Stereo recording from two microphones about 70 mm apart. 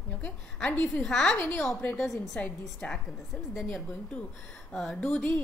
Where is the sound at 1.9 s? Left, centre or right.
Centre.